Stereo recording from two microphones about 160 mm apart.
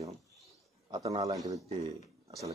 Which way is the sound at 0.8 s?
25° right (ahead or behind).